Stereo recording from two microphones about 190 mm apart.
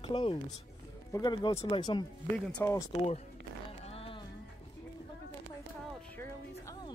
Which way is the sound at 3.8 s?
30° left (ahead or behind).